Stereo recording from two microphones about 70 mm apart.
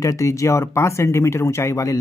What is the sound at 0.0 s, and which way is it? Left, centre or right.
Speech, left.